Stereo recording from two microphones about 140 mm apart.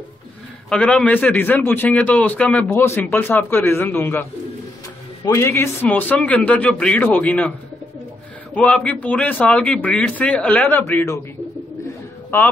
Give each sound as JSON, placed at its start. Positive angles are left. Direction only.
{"t": 0.7, "sound": "speech", "side_deg": 5}
{"t": 8.5, "sound": "speech", "side_deg": 10}